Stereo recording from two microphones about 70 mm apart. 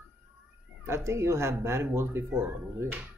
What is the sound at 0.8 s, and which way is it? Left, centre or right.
Speech, right.